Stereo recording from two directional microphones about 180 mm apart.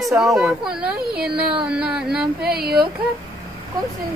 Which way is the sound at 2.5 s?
60° right (ahead or behind).